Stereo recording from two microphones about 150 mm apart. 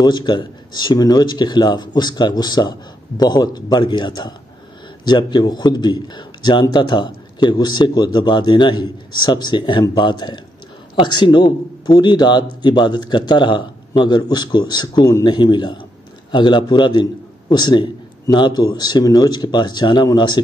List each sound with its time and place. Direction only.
0.0 s a man's voice: 30° left (ahead or behind)